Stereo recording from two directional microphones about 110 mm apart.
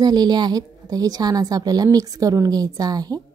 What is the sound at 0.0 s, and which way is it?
A woman's voice, 40° right (ahead or behind).